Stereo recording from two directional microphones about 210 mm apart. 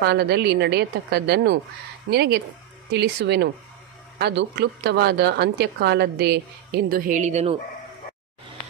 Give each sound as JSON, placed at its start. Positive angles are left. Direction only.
{"t": 0.0, "sound": "a woman's voice", "side_deg": -50}